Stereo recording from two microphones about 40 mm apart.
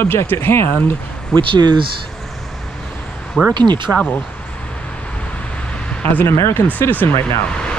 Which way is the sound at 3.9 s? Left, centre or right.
Right.